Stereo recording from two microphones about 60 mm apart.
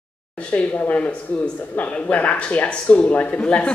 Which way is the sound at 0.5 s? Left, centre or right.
Left.